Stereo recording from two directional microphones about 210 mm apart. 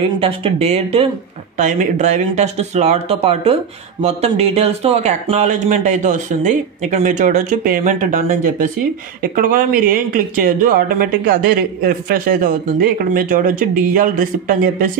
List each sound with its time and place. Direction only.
0.2 s speech: 30° right (ahead or behind)